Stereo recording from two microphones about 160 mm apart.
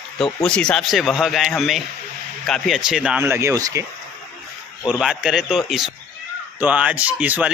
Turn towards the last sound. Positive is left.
turn(degrees=-10)  # may be behind; listen again after turning